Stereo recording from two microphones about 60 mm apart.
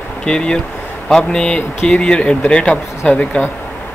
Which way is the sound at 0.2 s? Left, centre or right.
Centre.